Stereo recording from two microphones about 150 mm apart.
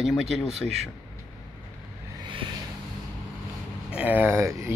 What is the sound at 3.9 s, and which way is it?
Speech, 10° right (ahead or behind).